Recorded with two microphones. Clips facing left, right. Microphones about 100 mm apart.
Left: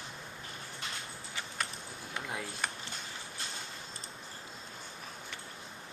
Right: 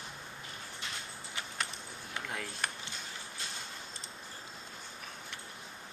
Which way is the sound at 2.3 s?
5° left (ahead or behind).